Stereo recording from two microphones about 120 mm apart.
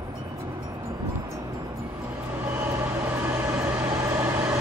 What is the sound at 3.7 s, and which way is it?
Vehicle, 20° right (ahead or behind).